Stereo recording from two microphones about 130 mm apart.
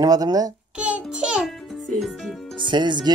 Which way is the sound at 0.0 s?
30° right (ahead or behind).